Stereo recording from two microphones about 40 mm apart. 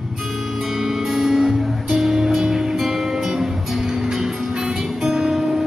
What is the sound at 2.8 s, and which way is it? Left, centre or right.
Music, centre.